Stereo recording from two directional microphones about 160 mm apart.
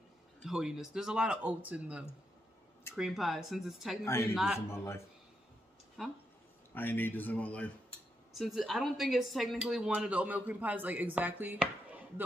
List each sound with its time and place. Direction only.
0.4 s speech: 5° right (ahead or behind)
4.0 s speech: 15° left (ahead or behind)
6.0 s speech: 5° right (ahead or behind)
6.7 s speech: 10° left (ahead or behind); by 12.0 s 10° right (ahead or behind)